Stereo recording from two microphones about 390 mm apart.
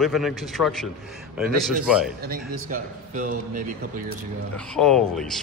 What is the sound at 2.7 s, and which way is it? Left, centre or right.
Speech, right.